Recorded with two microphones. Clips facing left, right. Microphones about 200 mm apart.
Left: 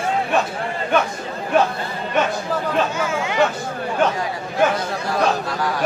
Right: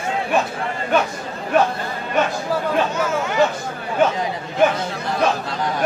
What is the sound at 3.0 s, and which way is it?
Speech, 10° left (ahead or behind).